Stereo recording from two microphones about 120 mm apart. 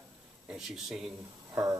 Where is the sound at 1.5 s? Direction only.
25° right (ahead or behind).